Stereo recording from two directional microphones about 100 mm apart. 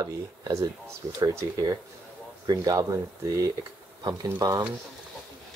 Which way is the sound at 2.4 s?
45° right (ahead or behind).